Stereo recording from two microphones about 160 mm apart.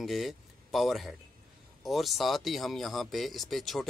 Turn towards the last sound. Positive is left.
turn(degrees=0)  # may be behind; listen again after turning